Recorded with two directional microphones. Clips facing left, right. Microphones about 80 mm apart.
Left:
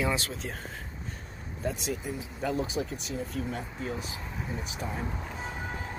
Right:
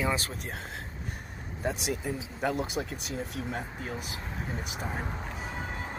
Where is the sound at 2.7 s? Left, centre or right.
Right.